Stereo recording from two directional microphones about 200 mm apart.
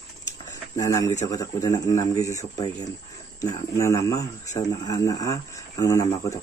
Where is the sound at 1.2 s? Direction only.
15° left (ahead or behind).